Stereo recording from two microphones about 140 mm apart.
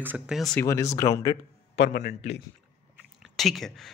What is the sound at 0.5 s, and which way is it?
Speech, 20° left (ahead or behind).